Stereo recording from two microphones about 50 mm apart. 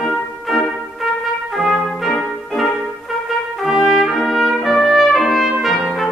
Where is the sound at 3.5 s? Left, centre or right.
Centre.